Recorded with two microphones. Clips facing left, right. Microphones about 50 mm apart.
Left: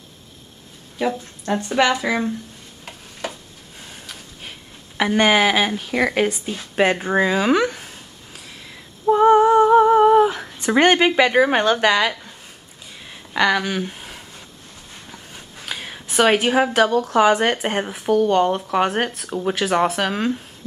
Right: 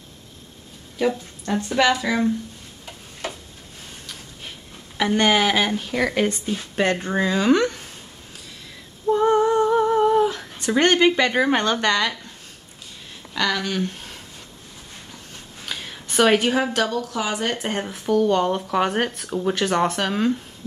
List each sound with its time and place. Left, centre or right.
0.9 s speech: centre
4.9 s speech: centre
9.0 s humming: left
11.7 s speech: centre
13.3 s speech: left
15.6 s a sound: centre
16.1 s a woman's voice: centre; by 17.1 s left
17.1 s speech: left
17.6 s speech: centre